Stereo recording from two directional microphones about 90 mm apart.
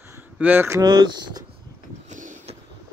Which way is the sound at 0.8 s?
50° right (ahead or behind).